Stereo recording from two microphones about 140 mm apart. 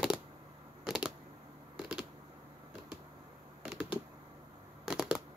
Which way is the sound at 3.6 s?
5° right (ahead or behind).